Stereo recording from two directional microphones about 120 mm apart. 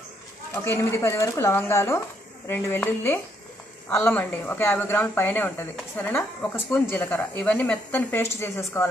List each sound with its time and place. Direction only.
0.7 s speech: 25° left (ahead or behind)